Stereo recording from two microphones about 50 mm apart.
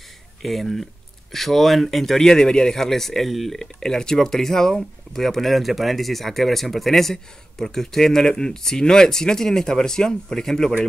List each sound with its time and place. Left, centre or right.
0.4 s speech: centre